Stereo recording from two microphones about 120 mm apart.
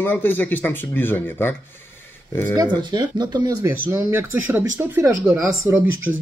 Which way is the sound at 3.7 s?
15° right (ahead or behind).